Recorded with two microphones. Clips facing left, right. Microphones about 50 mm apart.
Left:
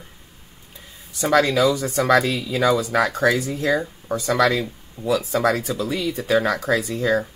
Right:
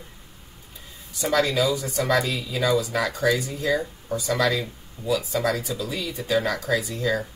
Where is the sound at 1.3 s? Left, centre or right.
Left.